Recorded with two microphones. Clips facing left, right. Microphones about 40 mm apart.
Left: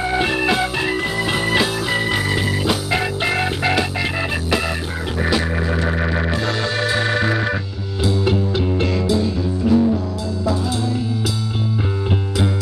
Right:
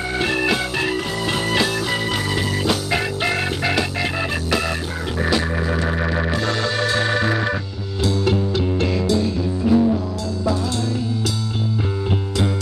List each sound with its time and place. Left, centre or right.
0.0 s music: centre
8.0 s music: centre
9.7 s music: centre